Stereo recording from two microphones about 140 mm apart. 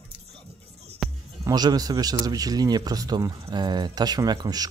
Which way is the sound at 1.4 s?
30° right (ahead or behind).